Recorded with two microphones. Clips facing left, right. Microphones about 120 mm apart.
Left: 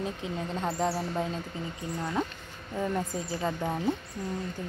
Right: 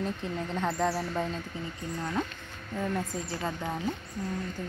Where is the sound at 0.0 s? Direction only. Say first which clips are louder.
Right 1 dB; 10° left (ahead or behind).